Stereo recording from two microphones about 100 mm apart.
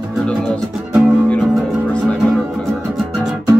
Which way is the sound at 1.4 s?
Centre (ahead or behind).